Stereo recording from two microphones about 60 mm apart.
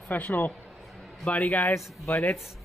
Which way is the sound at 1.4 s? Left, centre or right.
Left.